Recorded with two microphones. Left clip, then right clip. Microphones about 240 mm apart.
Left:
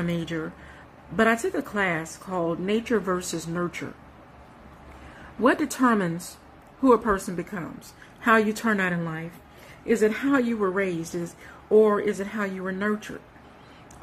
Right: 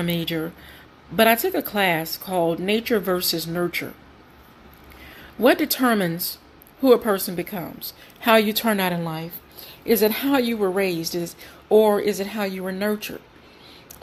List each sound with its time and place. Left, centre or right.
0.0 s a woman's voice: centre
5.4 s a woman's voice: centre